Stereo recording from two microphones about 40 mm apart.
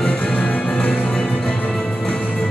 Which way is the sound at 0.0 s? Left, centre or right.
Left.